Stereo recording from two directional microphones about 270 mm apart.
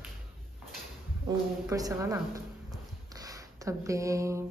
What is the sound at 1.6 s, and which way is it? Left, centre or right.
Speech, centre.